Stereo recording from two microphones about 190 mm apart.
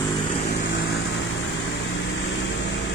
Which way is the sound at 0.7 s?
75° left (ahead or behind).